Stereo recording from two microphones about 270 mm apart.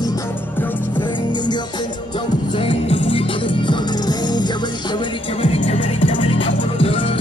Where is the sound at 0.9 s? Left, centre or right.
Centre.